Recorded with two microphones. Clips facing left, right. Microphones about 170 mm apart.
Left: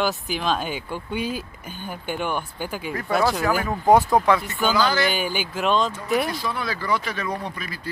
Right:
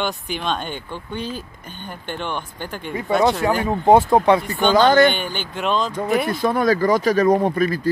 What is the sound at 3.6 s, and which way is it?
Speech, 25° right (ahead or behind).